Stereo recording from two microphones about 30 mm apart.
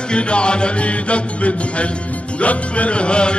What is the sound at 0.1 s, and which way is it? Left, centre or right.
Music, left.